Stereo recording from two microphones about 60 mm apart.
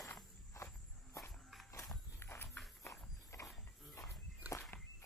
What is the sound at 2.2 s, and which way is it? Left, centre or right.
Walk, left.